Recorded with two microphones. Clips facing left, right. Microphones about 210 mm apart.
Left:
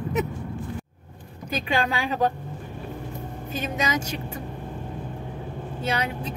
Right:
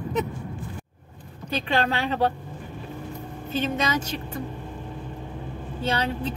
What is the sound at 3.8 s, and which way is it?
Speech, 10° left (ahead or behind).